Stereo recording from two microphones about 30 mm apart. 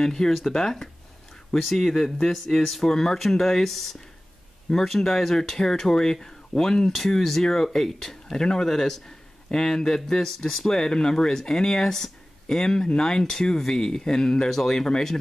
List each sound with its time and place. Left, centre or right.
0.0 s speech: left
4.8 s speech: centre
10.2 s speech: centre